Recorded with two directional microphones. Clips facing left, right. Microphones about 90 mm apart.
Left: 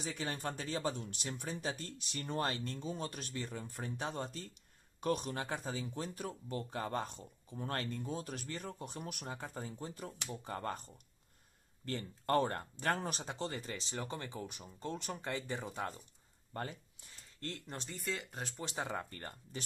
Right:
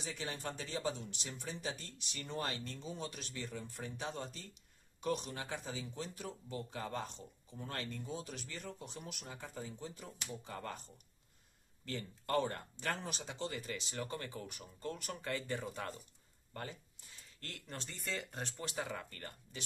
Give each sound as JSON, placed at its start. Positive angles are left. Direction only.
{"t": 0.0, "sound": "speech", "side_deg": 45}
{"t": 16.5, "sound": "speech", "side_deg": 35}
{"t": 18.0, "sound": "speech", "side_deg": 0}
{"t": 18.6, "sound": "speech", "side_deg": 25}